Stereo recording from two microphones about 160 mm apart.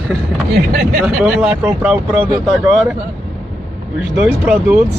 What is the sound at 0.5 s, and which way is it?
Speech, 70° right (ahead or behind).